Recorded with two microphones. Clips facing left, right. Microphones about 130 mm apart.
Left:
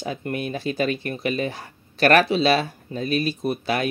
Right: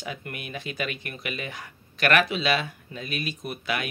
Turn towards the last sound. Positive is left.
turn(degrees=35)  # may be behind; listen again after turning